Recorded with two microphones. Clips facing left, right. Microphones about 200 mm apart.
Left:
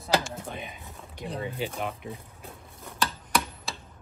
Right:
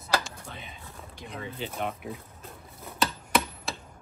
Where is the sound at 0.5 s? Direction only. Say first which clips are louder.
Left 4 dB; 15° left (ahead or behind).